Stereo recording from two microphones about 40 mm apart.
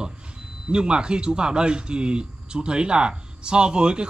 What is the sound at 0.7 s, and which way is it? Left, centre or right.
Speech, right.